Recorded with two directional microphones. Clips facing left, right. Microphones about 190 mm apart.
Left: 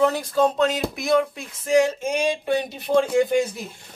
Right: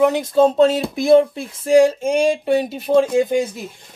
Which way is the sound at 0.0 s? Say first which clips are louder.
Right 5 dB; 20° right (ahead or behind).